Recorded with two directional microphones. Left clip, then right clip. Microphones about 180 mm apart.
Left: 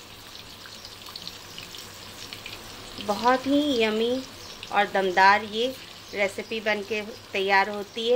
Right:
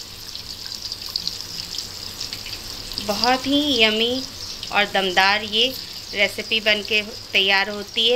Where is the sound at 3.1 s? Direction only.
5° left (ahead or behind).